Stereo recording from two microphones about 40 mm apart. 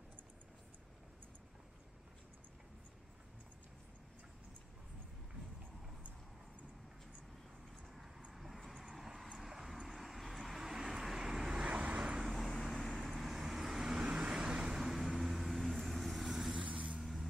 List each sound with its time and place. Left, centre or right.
8.3 s vehicle: centre; by 11.7 s right
11.7 s vehicle: right
12.6 s vehicle: centre; by 14.8 s right
14.8 s vehicle: centre
16.5 s vehicle: right
17.0 s vehicle: centre